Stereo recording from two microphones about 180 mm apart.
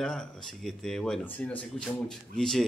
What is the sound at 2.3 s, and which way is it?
Speech, 5° left (ahead or behind).